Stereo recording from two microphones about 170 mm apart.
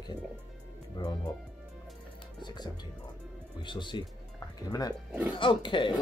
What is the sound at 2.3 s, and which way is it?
Speech, 25° left (ahead or behind).